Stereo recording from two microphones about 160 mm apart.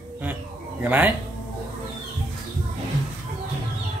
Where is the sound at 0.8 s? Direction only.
10° right (ahead or behind).